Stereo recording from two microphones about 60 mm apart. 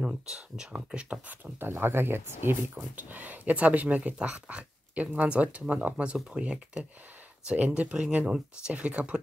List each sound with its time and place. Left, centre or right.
0.0 s speech: centre
1.4 s speech: right; by 9.2 s centre